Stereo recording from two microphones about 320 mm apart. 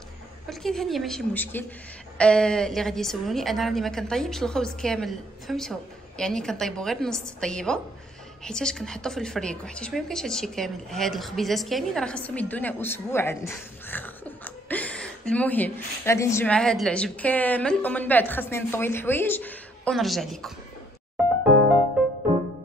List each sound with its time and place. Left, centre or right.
0.5 s a woman's voice: centre